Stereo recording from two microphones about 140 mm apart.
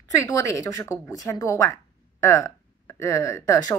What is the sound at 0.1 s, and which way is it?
Speech, 20° left (ahead or behind).